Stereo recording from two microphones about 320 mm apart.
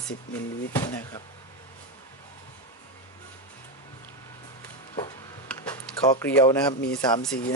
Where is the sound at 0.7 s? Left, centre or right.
Centre.